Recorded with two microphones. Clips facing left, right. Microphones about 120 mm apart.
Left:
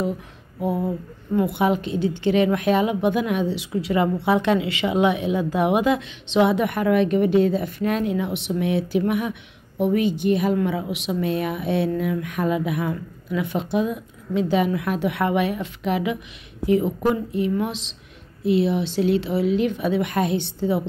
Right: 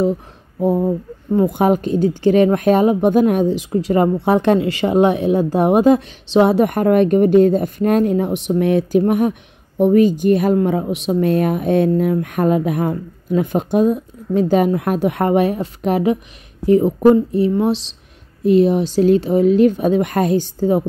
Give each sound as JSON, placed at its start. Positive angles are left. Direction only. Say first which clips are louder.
{"t": 0.6, "sound": "a woman's voice", "louder": "right 7 dB", "side_deg": -40}